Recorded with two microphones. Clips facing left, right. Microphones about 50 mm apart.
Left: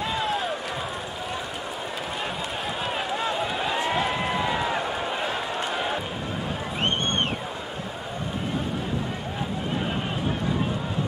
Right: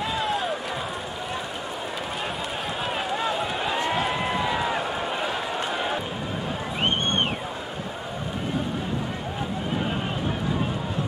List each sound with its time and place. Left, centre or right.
0.0 s run: centre
2.8 s run: centre